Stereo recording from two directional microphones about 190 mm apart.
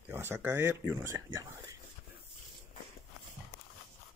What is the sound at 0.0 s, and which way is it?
Speech, 10° right (ahead or behind).